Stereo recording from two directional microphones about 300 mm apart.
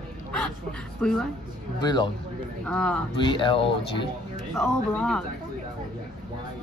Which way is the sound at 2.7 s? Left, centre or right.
Centre.